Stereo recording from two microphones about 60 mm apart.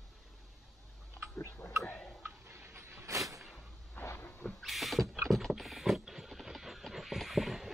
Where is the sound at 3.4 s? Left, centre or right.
Centre.